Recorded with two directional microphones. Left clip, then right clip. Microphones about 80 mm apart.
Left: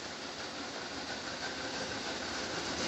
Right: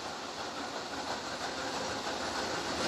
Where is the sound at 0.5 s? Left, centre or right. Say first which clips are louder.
Right 3 dB; left.